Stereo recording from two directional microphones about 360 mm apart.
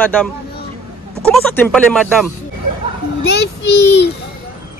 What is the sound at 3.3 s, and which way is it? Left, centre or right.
Speech, left.